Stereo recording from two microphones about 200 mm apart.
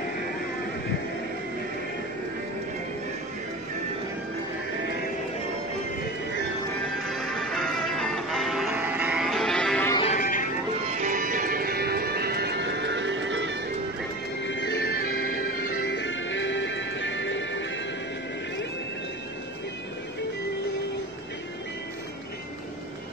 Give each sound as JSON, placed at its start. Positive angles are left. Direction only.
{"t": 7.1, "sound": "music", "side_deg": 0}
{"t": 10.0, "sound": "music", "side_deg": 40}
{"t": 10.9, "sound": "music", "side_deg": -40}
{"t": 14.4, "sound": "music", "side_deg": 65}
{"t": 15.9, "sound": "music", "side_deg": 70}